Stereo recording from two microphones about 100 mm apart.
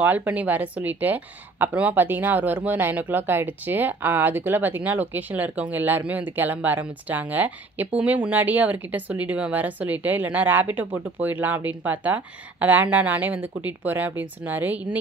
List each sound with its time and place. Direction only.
0.0 s a woman's voice: 15° right (ahead or behind)